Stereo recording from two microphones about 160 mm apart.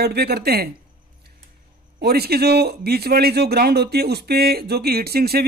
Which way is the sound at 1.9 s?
80° right.